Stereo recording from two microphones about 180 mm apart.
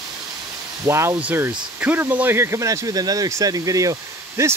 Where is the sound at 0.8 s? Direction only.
15° right (ahead or behind).